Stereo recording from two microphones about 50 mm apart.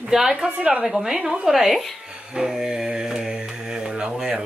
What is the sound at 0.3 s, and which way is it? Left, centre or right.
A woman's voice, centre.